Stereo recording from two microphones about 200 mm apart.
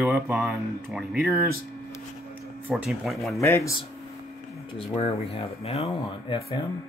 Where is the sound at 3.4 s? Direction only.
15° left (ahead or behind).